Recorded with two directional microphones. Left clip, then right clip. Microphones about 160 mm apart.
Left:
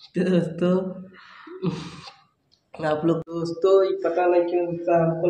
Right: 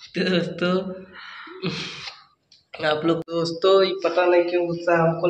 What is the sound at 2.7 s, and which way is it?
Speech, 30° left (ahead or behind).